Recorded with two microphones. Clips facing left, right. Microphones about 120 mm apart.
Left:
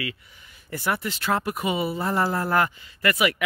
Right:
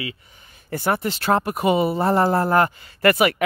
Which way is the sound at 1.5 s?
50° right (ahead or behind).